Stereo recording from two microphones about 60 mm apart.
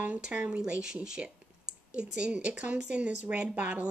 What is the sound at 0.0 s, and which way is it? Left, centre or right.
Speech, right.